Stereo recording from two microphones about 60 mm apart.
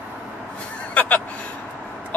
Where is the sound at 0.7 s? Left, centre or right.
Left.